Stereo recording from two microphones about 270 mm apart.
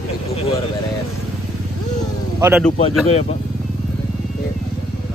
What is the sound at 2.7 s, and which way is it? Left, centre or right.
Speech, left.